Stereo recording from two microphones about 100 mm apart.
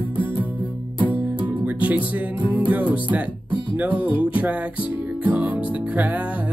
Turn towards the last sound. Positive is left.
turn(degrees=-15)  # may be behind; listen again after turning